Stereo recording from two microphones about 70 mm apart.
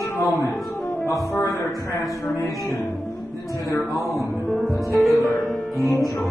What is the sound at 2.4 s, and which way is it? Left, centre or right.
Music, left.